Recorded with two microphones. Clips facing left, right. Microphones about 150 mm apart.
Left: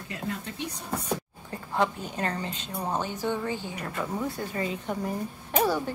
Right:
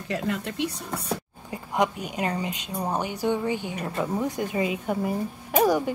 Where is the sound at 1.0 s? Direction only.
15° right (ahead or behind).